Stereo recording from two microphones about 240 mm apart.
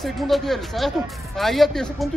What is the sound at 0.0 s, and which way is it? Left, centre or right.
Speech, centre.